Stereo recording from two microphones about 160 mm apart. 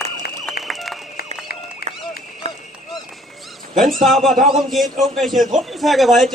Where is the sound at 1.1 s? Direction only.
75° left (ahead or behind).